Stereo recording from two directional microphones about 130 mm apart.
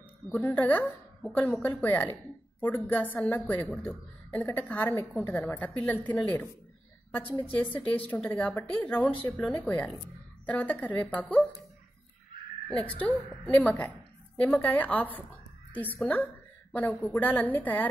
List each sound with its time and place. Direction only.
0.3 s a woman's voice: 15° left (ahead or behind)
7.2 s a woman's voice: 45° left (ahead or behind)
7.6 s a woman's voice: 10° left (ahead or behind)
12.6 s a woman's voice: 10° left (ahead or behind)
16.7 s a woman's voice: 10° left (ahead or behind)